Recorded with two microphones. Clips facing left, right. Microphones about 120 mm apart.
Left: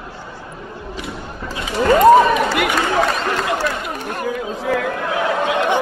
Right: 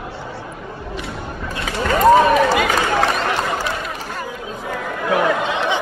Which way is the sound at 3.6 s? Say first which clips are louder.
Left 2 dB; 60° left (ahead or behind).